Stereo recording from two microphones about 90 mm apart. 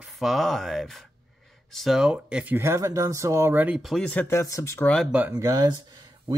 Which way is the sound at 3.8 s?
Centre (ahead or behind).